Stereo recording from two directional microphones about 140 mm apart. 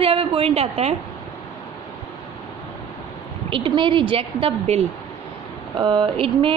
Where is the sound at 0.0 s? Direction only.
40° right (ahead or behind).